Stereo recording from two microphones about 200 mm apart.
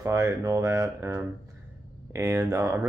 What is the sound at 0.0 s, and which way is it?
Speech, 15° right (ahead or behind).